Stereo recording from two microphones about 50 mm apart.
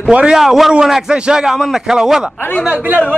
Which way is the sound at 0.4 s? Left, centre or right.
Centre.